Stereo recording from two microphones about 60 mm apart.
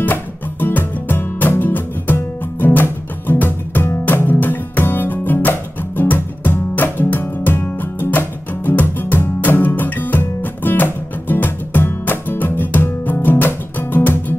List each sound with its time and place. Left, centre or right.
0.0 s music: left